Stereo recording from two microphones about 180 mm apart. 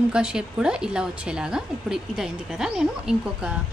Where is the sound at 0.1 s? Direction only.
5° right (ahead or behind).